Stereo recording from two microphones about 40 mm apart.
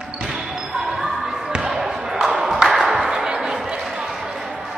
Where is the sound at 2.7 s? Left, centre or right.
Centre.